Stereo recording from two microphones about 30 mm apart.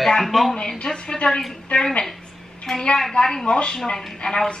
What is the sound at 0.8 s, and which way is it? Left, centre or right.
A woman's voice, left.